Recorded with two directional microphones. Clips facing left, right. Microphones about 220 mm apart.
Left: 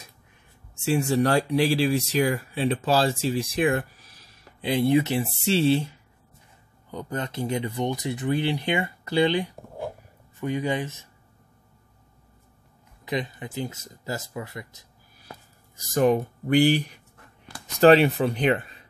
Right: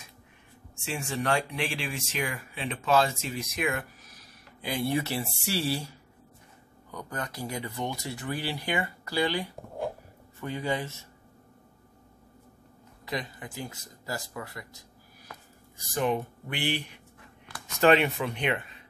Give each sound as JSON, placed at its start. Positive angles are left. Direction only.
{"t": 0.8, "sound": "speech", "side_deg": 40}
{"t": 13.0, "sound": "speech", "side_deg": 20}
{"t": 15.9, "sound": "speech", "side_deg": 40}